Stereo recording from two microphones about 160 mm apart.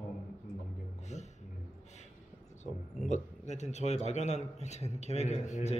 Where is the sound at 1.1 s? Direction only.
45° left (ahead or behind).